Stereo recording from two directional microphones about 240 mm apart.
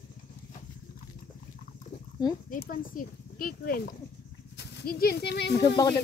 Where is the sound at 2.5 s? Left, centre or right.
Left.